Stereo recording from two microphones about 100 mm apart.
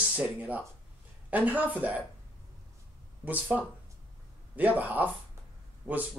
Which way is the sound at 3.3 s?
15° right (ahead or behind).